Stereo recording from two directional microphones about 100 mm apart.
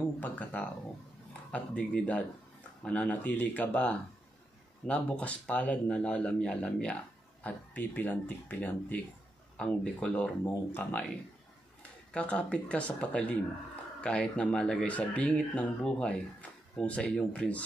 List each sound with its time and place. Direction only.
0.2 s speech: 15° left (ahead or behind)
12.1 s speech: 10° left (ahead or behind)